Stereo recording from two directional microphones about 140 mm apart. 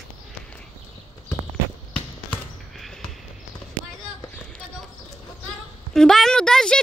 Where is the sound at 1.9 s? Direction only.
5° left (ahead or behind).